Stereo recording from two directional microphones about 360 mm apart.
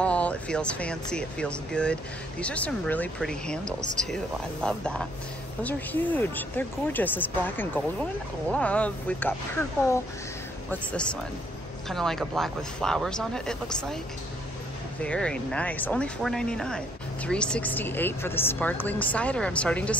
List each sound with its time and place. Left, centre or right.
0.0 s speech: centre
4.6 s speech: centre
15.0 s speech: centre